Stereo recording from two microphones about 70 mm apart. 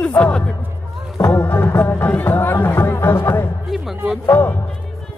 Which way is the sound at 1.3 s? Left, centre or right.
Left.